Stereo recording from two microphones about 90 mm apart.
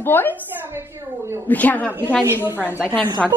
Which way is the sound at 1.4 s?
20° left (ahead or behind).